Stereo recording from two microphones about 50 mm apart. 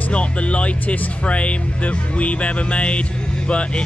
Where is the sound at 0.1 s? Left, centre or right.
Left.